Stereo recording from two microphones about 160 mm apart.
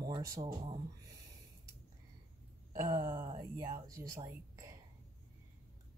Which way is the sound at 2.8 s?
25° right (ahead or behind).